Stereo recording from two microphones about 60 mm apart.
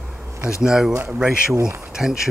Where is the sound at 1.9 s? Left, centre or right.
Centre.